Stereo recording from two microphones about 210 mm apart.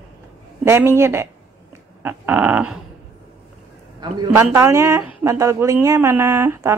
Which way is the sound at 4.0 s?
15° right (ahead or behind).